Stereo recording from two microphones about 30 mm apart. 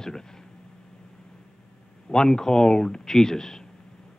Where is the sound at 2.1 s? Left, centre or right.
Left.